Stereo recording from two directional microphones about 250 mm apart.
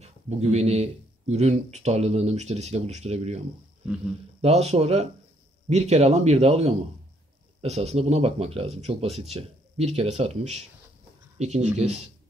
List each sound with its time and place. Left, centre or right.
0.0 s speech: right